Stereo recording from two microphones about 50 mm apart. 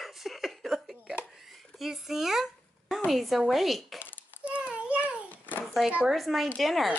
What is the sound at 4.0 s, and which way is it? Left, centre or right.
Babbling, left.